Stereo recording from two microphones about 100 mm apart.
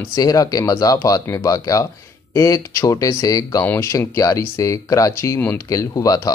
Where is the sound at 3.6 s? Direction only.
25° left (ahead or behind).